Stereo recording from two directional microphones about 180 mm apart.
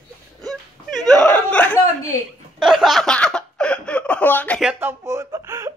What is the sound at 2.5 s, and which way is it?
Laughter, centre (ahead or behind).